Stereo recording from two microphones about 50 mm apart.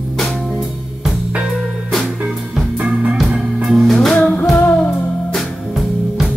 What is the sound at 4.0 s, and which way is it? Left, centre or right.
Music, centre.